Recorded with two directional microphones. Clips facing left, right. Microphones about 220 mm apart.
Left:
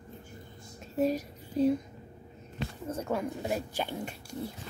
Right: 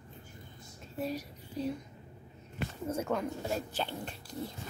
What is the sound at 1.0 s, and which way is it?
Speech, 45° left (ahead or behind).